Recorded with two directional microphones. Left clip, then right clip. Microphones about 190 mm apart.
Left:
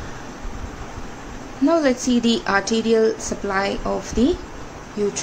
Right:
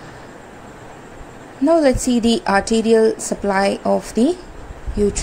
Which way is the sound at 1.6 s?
25° right (ahead or behind).